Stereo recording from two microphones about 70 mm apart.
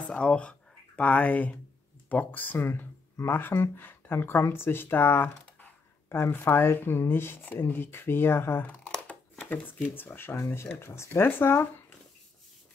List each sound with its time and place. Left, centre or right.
0.1 s speech: centre; by 8.6 s left
8.8 s a sound: centre
9.9 s speech: left